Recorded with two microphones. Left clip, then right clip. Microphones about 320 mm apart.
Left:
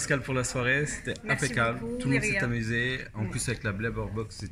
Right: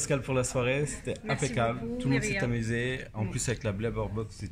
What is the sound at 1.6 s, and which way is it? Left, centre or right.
Speech, centre.